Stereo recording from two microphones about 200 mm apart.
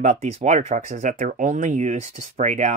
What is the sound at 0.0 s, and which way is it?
Speech, 35° right (ahead or behind).